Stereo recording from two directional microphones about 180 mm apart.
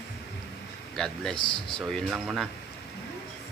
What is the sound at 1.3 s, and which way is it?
Speech, 25° left (ahead or behind).